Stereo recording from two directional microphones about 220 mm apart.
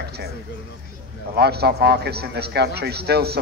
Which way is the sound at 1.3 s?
45° right (ahead or behind).